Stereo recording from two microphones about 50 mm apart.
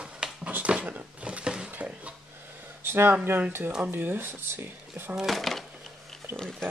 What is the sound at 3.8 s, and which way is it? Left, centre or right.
Speech, right.